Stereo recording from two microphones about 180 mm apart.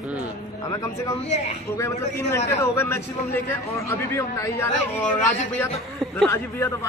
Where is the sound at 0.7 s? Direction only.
15° left (ahead or behind).